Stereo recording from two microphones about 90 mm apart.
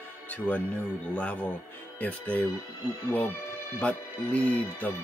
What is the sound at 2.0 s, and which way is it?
Speech, 15° left (ahead or behind).